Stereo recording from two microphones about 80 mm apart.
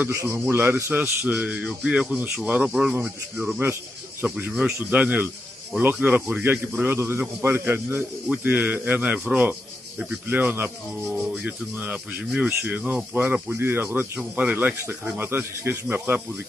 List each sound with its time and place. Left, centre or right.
0.1 s a man's voice: right
1.2 s speech: centre
4.5 s speech: centre; by 8.0 s right
8.3 s speech: centre